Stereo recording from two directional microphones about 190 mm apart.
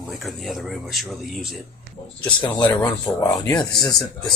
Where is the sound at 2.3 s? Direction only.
25° left (ahead or behind).